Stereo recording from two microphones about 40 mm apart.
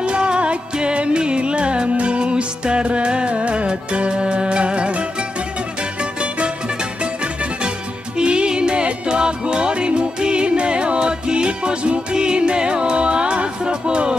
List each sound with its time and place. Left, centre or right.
0.0 s music: right
8.2 s music: right